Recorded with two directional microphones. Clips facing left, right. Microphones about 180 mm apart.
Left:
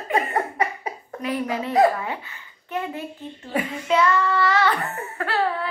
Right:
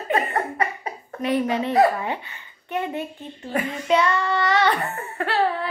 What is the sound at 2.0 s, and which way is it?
A child's voice, 25° right (ahead or behind).